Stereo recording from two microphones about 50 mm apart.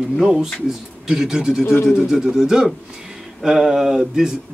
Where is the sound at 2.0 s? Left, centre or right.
Centre.